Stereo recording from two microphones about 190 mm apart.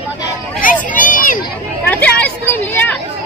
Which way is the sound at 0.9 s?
45° left (ahead or behind).